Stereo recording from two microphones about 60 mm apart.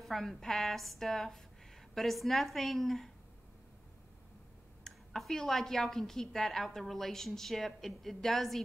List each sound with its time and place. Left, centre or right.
0.0 s speech: centre
4.8 s speech: centre